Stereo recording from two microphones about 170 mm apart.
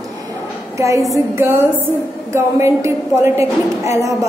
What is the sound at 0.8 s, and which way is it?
A woman's voice, 20° right (ahead or behind).